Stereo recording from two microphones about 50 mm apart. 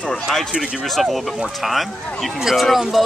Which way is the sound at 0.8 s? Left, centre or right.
Centre.